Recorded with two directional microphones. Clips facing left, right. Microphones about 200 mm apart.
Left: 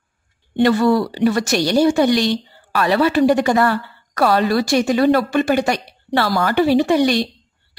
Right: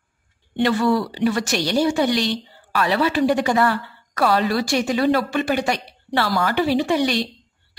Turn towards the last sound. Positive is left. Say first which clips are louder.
# left 5 dB
turn(degrees=45)  # may be behind; listen again after turning